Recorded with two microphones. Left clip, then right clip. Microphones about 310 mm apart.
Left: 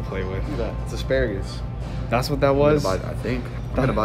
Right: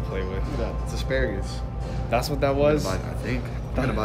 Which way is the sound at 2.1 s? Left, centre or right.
Centre.